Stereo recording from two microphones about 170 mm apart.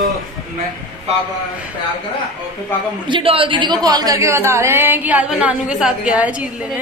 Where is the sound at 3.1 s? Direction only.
30° right (ahead or behind).